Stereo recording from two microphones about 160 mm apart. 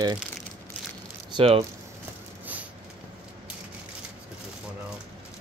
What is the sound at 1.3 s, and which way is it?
Speech, 35° right (ahead or behind).